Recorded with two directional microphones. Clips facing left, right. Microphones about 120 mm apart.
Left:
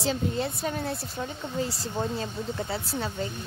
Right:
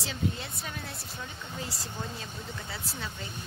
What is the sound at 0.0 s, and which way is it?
Speech, 35° left (ahead or behind).